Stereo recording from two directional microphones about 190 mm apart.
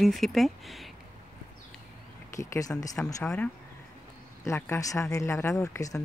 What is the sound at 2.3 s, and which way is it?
Speech, 15° left (ahead or behind).